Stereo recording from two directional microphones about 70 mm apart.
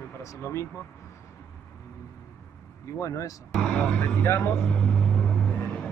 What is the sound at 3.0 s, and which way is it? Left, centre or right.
Speech, left.